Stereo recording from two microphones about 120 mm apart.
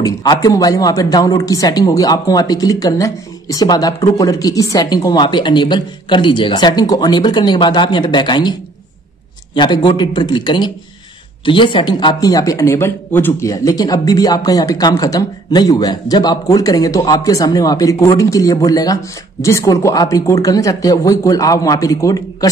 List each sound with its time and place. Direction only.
0.0 s a man's voice: 35° left (ahead or behind); by 13.5 s 20° left (ahead or behind)
13.5 s a man's voice: 30° left (ahead or behind)